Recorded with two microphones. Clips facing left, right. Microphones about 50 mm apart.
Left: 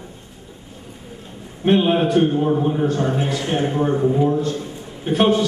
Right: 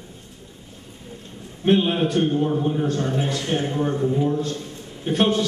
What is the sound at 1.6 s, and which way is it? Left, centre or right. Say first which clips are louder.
A man's voice: left 3 dB; centre.